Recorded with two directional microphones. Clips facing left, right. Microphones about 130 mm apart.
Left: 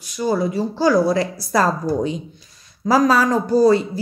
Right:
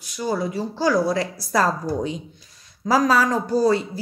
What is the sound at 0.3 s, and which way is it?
A woman's voice, 35° left (ahead or behind).